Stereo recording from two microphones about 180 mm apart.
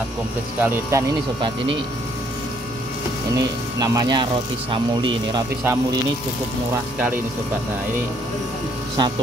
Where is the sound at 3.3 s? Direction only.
20° right (ahead or behind).